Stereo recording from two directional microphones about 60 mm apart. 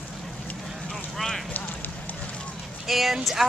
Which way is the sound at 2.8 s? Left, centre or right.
Centre.